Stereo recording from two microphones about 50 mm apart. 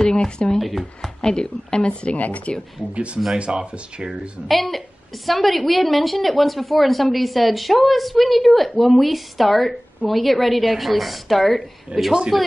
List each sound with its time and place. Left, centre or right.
0.0 s speech: centre
0.6 s a woman's voice: centre
1.2 s speech: centre
1.9 s speech: left
2.9 s speech: right
4.5 s a woman's voice: centre
11.9 s speech: right
12.3 s a woman's voice: centre